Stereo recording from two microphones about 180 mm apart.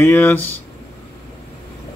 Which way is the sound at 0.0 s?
10° left (ahead or behind).